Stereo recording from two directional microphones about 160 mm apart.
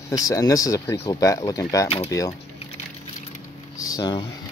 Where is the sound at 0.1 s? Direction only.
20° left (ahead or behind).